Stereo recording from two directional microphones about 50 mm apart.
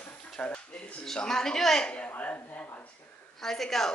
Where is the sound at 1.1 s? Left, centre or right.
Centre.